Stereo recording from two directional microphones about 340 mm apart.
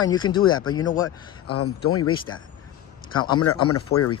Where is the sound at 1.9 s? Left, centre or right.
Left.